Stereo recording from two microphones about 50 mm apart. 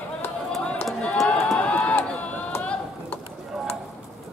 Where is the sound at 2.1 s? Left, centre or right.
Left.